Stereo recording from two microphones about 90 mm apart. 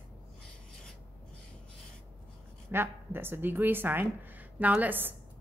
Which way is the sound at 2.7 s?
25° right (ahead or behind).